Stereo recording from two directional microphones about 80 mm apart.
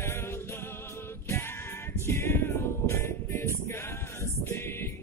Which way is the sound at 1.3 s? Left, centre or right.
Left.